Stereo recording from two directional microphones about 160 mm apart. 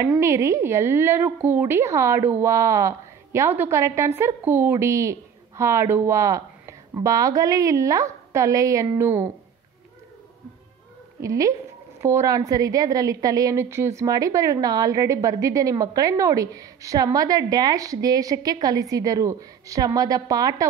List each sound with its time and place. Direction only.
0.2 s a woman's voice: 20° right (ahead or behind)
11.1 s a woman's voice: 20° right (ahead or behind)